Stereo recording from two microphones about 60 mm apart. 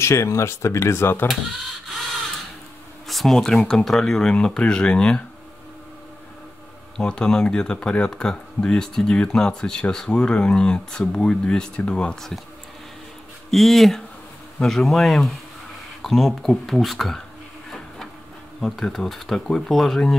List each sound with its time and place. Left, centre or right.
0.0 s speech: left
1.2 s printer: centre
3.1 s speech: centre
7.1 s speech: centre
13.5 s speech: centre
17.6 s printer: centre
18.6 s speech: centre